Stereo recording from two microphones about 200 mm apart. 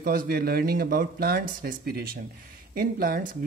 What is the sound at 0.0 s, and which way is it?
Speech, 45° right (ahead or behind).